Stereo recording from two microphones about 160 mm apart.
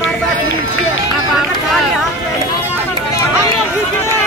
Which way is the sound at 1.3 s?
Centre (ahead or behind).